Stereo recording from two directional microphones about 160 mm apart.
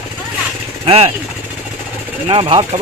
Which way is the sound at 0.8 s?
35° right (ahead or behind).